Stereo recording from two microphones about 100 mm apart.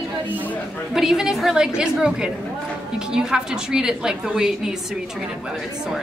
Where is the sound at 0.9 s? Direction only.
5° right (ahead or behind).